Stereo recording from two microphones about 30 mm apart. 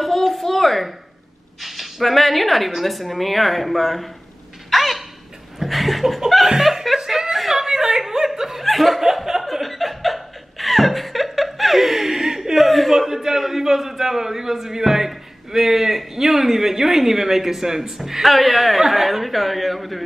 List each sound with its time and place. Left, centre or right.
0.0 s a sound: centre
1.6 s speech: centre
4.6 s a sound: centre
5.6 s laughter: centre
6.9 s chuckle: centre
7.5 s a sound: centre
8.4 s laughter: centre
8.6 s laughter: centre
9.0 s chuckle: centre
9.5 s chuckle: centre
12.5 s chuckle: centre
12.9 s a man's voice: centre
18.2 s speech: centre